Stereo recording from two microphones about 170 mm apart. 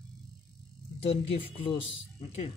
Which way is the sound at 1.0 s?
35° left (ahead or behind).